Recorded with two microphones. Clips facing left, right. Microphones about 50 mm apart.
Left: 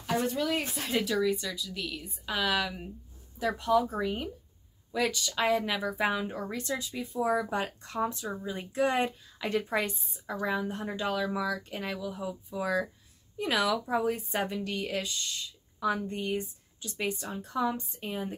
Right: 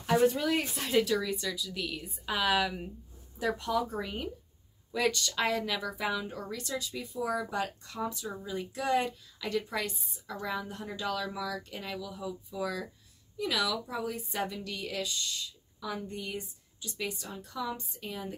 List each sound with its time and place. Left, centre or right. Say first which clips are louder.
0.1 s speech: right 3 dB; centre
5.5 s speech: left 4 dB; centre
5.9 s a woman's voice: left 4 dB; left
8.3 s speech: left 3 dB; left
8.5 s a woman's voice: left 2 dB; left
15.8 s a woman's voice: left 7 dB; left